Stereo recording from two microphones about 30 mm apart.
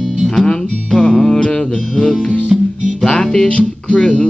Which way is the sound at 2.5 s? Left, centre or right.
Centre.